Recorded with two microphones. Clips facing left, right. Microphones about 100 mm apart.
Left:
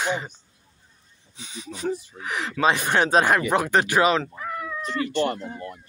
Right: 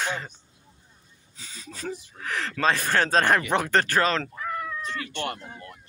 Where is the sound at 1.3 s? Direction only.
20° left (ahead or behind).